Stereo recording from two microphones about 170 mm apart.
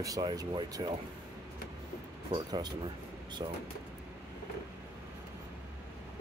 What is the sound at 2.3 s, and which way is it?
Speech, 25° right (ahead or behind).